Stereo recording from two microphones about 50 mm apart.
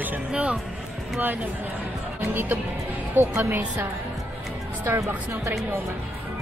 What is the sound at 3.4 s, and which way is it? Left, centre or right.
Speech, right.